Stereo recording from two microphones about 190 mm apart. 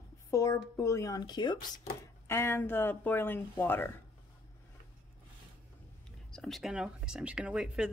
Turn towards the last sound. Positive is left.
turn(degrees=-5)  # may be behind; listen again after turning